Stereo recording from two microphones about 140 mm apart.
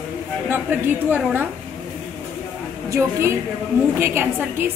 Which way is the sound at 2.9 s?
20° right (ahead or behind).